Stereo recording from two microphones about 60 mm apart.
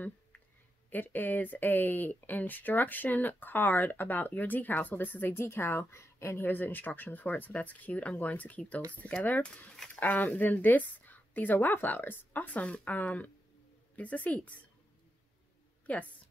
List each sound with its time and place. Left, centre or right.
0.8 s speech: left
6.4 s speech: left; by 9.8 s centre
9.9 s speech: left
15.9 s speech: left